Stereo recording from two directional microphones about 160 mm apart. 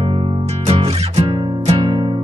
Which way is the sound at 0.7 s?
40° right (ahead or behind).